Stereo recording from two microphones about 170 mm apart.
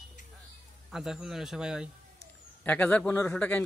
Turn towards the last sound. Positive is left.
turn(degrees=5)  # may be behind; listen again after turning